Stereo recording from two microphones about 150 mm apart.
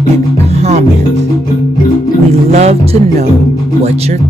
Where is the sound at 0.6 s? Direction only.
45° right (ahead or behind).